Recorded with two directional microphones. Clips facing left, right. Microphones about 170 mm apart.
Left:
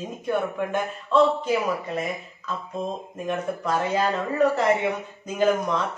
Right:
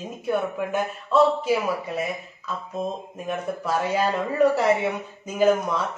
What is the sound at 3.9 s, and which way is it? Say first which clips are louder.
Speech: right 2 dB; 10° right (ahead or behind).